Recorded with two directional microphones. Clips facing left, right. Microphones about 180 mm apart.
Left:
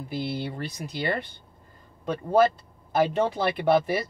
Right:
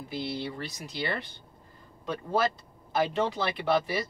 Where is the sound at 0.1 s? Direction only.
50° left (ahead or behind).